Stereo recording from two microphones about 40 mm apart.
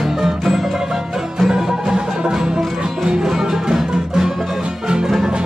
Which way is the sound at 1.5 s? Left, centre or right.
Centre.